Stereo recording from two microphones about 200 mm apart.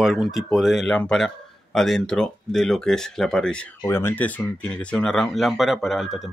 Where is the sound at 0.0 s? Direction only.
Centre (ahead or behind).